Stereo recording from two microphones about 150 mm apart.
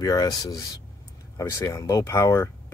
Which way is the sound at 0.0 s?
25° left (ahead or behind).